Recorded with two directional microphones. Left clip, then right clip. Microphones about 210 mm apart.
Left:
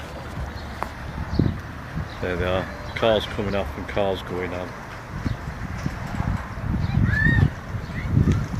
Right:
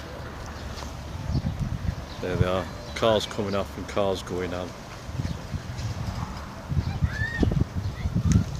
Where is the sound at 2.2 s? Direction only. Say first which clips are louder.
Left 2 dB; 10° right (ahead or behind).